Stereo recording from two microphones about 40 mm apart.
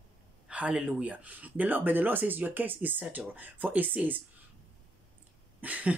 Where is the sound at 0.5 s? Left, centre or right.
Right.